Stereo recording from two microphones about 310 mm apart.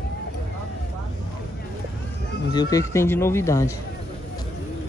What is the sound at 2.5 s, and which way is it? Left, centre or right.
Speech, centre.